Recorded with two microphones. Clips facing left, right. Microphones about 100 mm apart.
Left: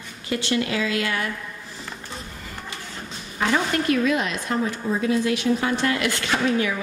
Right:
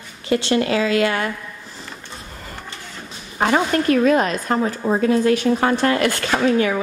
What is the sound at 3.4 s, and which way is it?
A woman's voice, 40° right (ahead or behind).